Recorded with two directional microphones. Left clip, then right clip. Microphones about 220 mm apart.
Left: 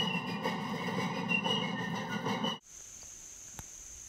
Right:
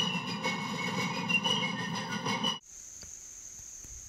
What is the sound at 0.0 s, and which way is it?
Vehicle, 20° right (ahead or behind).